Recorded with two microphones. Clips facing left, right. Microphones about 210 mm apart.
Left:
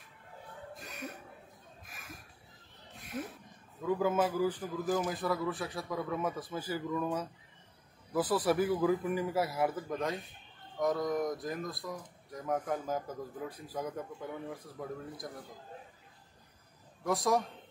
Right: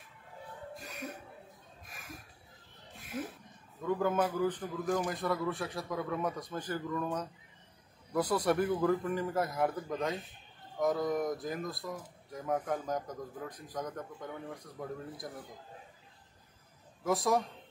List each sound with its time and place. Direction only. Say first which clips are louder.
0.7 s music: right 1 dB; centre (ahead or behind)
3.0 s music: right 1 dB; centre (ahead or behind)
3.8 s speech: left 1 dB; 5° left (ahead or behind)
17.0 s speech: even; centre (ahead or behind)